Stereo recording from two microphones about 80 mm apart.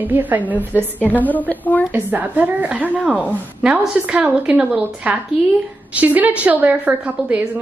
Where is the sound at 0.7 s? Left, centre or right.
Left.